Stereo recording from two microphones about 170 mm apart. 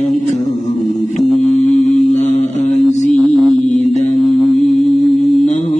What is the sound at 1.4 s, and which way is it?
Mantra, 40° left (ahead or behind).